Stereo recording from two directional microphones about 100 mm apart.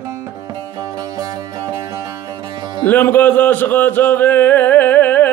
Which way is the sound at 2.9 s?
20° left (ahead or behind).